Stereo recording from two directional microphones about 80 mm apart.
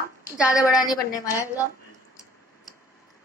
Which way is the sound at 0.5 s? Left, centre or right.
Left.